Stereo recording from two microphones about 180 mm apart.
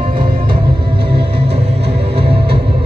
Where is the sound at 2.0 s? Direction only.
30° right (ahead or behind).